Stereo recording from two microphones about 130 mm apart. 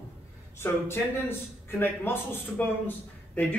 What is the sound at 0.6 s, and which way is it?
A man's voice, 20° left (ahead or behind).